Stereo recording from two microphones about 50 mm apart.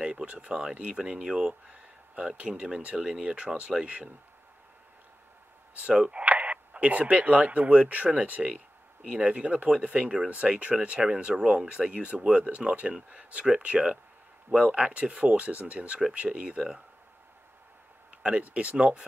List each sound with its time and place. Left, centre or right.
0.0 s speech: centre
1.5 s speech: right
5.8 s speech: right
18.2 s speech: right